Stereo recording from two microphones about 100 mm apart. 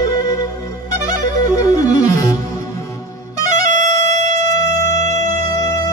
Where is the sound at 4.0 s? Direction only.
35° left (ahead or behind).